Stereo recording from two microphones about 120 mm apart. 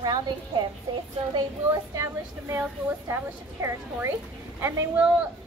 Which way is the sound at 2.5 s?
20° right (ahead or behind).